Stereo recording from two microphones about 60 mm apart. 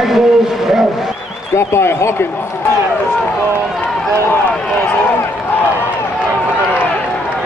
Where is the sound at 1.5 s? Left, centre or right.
Left.